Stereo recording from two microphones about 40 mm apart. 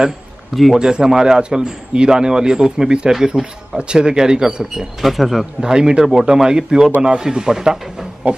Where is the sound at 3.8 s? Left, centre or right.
Right.